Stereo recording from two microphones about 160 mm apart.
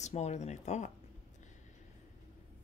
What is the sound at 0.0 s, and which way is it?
Speech, 45° left (ahead or behind).